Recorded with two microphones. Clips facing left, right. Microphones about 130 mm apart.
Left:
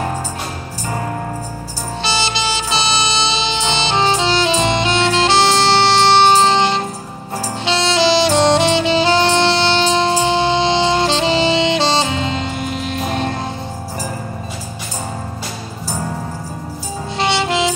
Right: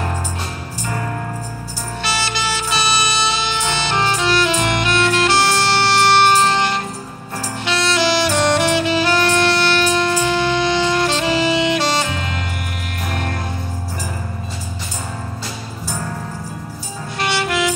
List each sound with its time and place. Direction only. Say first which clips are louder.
0.8 s music: left 2 dB; 30° left (ahead or behind)
7.6 s saxophone: left 3 dB; 25° left (ahead or behind)
17.2 s music: left 2 dB; 25° left (ahead or behind)